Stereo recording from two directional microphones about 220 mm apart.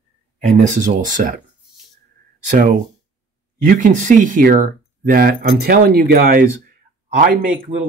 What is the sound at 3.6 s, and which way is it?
Speech, 35° right (ahead or behind).